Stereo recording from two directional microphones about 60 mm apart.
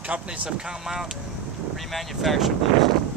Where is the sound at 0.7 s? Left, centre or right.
Centre.